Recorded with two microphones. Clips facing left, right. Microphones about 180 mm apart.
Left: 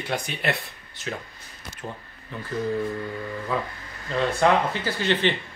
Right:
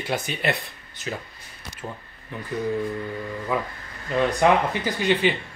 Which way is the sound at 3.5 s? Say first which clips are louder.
Right 2 dB; 15° right (ahead or behind).